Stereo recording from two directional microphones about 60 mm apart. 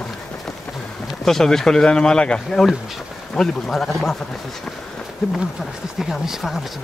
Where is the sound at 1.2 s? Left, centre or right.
Centre.